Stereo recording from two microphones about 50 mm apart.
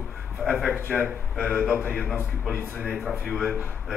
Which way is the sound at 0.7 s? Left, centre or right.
Left.